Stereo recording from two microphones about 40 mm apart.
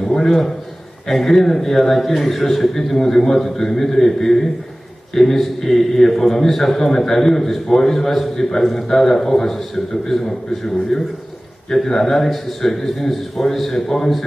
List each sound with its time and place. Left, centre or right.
1.0 s a man's voice: centre